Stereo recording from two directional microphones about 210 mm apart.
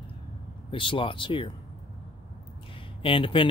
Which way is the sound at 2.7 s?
25° left (ahead or behind).